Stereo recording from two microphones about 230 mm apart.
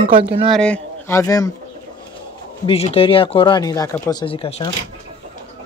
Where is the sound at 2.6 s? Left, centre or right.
Left.